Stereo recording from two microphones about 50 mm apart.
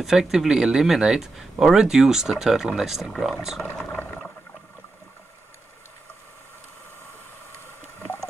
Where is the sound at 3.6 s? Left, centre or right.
Left.